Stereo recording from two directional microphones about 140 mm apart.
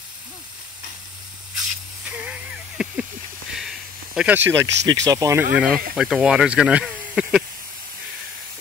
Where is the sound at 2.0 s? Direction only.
10° right (ahead or behind).